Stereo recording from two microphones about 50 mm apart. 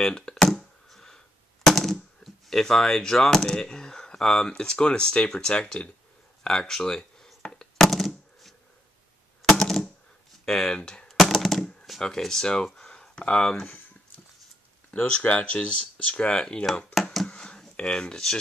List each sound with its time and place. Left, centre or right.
0.0 s speech: centre
0.8 s a sound: centre
4.6 s speech: centre
6.4 s speech: centre
7.4 s a sound: centre
9.4 s typewriter: centre
10.4 s speech: centre
10.8 s speech: centre
11.1 s a sound: centre
12.0 s speech: centre
15.2 s speech: left
17.3 s a sound: centre